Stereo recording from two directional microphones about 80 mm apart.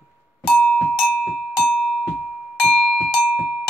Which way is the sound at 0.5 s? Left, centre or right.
Centre.